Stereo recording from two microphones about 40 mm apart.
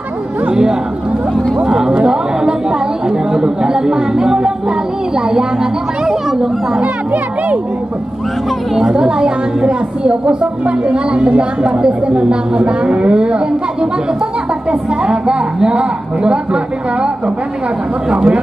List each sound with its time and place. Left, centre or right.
1.6 s chatter: centre
3.1 s a sound: centre
5.3 s speech: centre
8.7 s a woman's voice: centre
14.7 s a woman's voice: right
18.1 s a woman's voice: right